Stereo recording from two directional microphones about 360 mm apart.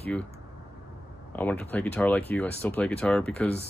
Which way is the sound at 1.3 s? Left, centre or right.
Centre.